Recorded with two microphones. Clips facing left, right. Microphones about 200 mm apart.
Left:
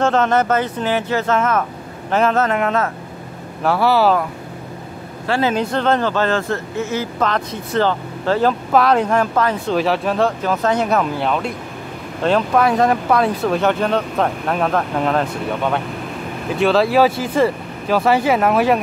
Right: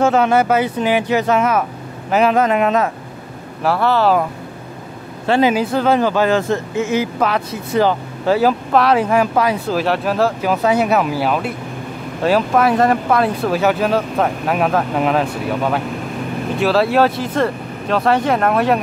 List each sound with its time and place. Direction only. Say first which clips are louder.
0.0 s speech: right 2 dB; 10° right (ahead or behind)
3.6 s speech: even; 5° left (ahead or behind)
5.2 s speech: right 4 dB; 20° right (ahead or behind)
5.5 s speech: right 2 dB; 5° right (ahead or behind)